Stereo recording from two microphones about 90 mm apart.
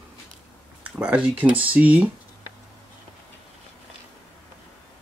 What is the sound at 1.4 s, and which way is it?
Speech, 15° right (ahead or behind).